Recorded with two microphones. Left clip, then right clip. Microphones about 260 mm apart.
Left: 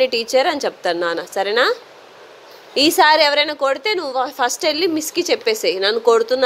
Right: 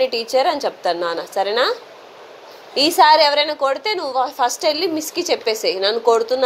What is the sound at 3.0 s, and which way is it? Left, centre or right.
Speech, left.